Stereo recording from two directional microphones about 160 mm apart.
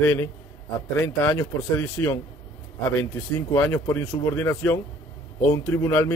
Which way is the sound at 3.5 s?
15° left (ahead or behind).